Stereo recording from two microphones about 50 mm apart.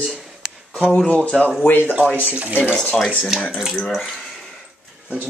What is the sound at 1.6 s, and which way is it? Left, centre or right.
Speech, left.